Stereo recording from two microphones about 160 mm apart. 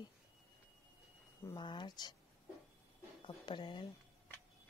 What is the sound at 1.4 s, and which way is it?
Speech, 30° left (ahead or behind).